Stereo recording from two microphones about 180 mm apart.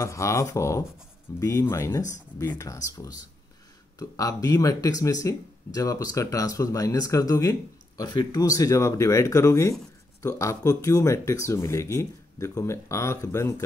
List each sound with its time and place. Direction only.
0.0 s speech: 15° left (ahead or behind)